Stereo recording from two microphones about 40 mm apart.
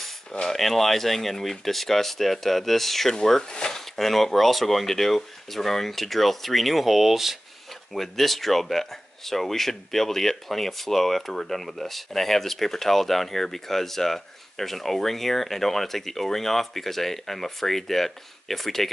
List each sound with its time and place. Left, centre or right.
0.3 s speech: centre
0.6 s speech: centre
3.8 s speech: centre
7.9 s speech: centre